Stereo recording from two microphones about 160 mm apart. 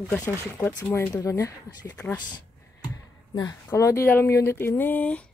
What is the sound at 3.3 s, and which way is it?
Speech, 20° left (ahead or behind).